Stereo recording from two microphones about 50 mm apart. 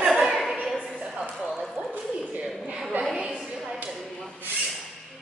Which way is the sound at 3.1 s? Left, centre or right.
Centre.